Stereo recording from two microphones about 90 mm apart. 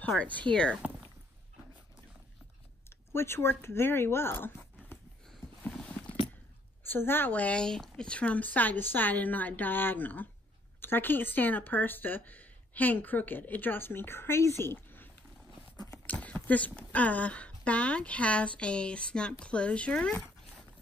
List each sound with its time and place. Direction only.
0.2 s speech: 15° left (ahead or behind)
3.1 s speech: 30° left (ahead or behind)
5.6 s clip-clop: 10° left (ahead or behind)
6.9 s speech: 25° left (ahead or behind)
16.1 s a sound: 15° left (ahead or behind)
16.4 s speech: 15° left (ahead or behind)